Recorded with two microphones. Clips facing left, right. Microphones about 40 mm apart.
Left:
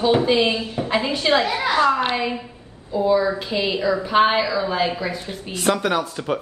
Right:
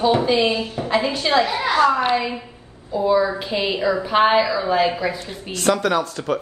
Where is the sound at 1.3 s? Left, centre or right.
Left.